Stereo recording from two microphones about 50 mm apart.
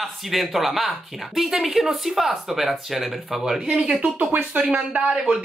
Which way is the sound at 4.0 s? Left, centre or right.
Right.